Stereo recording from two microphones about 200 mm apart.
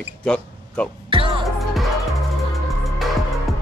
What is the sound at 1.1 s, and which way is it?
Music, 25° right (ahead or behind).